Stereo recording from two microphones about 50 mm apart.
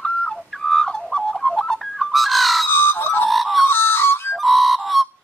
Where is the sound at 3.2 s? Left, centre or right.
Centre.